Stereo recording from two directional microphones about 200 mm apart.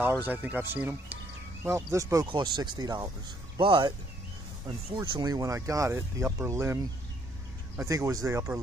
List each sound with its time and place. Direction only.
0.0 s speech: 10° right (ahead or behind)